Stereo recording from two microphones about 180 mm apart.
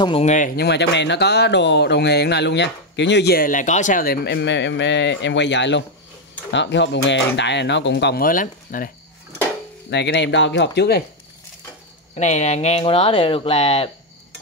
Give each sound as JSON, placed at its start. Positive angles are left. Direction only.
{"t": 0.0, "sound": "speech", "side_deg": 35}
{"t": 0.6, "sound": "speech", "side_deg": 70}
{"t": 9.8, "sound": "speech", "side_deg": 75}
{"t": 12.2, "sound": "speech", "side_deg": 40}